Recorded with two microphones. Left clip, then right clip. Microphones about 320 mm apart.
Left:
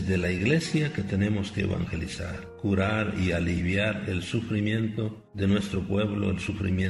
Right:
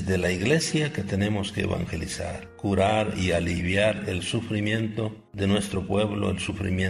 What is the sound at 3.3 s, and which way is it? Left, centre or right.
A man's voice, centre.